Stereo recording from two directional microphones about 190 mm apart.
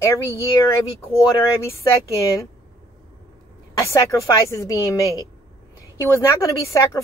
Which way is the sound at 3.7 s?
15° left (ahead or behind).